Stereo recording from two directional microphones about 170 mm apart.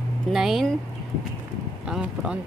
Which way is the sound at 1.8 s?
5° right (ahead or behind).